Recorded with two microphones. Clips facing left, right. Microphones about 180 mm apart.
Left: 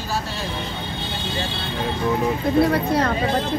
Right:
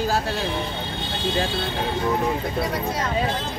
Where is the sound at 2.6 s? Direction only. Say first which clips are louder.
Left 7 dB; 60° left (ahead or behind).